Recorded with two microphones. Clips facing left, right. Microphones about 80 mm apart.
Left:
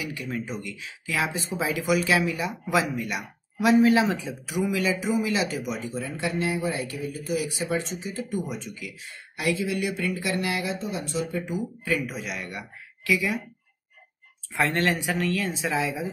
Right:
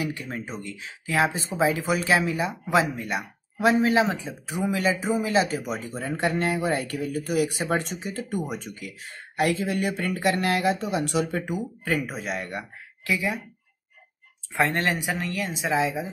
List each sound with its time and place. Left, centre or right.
0.0 s speech: right
11.8 s speech: right
14.5 s speech: right